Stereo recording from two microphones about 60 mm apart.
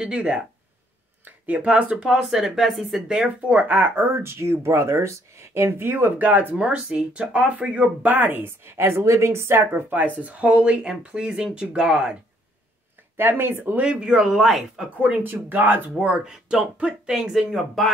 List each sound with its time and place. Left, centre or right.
0.0 s speech: centre
3.4 s speech: right
6.5 s speech: centre
13.2 s speech: right
13.7 s speech: right
14.2 s speech: centre
15.0 s speech: right
16.0 s speech: centre